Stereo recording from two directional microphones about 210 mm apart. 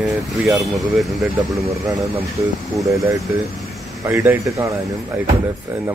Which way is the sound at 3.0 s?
15° right (ahead or behind).